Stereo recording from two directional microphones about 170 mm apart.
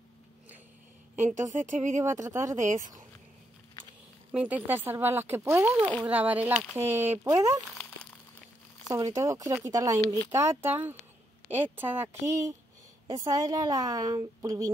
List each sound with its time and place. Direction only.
1.1 s a woman's voice: 45° right (ahead or behind)
2.0 s a woman's voice: 20° right (ahead or behind)
2.6 s a woman's voice: 45° right (ahead or behind)
4.3 s speech: 5° right (ahead or behind)
8.9 s a woman's voice: 20° right (ahead or behind)